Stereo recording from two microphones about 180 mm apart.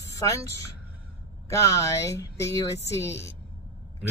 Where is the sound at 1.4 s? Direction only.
15° left (ahead or behind).